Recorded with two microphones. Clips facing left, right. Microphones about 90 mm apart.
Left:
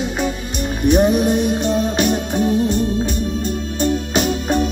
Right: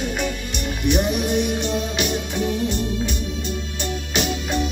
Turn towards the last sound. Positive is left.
turn(degrees=40)  # may be behind; listen again after turning